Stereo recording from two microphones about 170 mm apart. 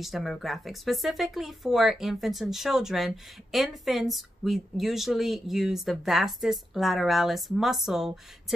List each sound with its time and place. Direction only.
0.0 s speech: centre (ahead or behind)